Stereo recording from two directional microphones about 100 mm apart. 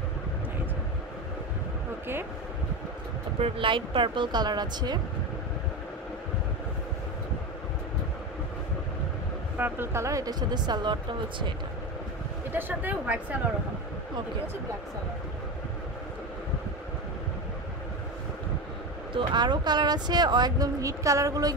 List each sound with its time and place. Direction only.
3.3 s speech: 70° right (ahead or behind); by 4.9 s 45° right (ahead or behind)
9.6 s speech: 25° right (ahead or behind); by 11.5 s 50° right (ahead or behind)
12.5 s speech: 20° right (ahead or behind)
19.1 s speech: 50° right (ahead or behind)